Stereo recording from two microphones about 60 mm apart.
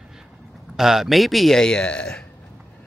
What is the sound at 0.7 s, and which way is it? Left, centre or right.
Speech, centre.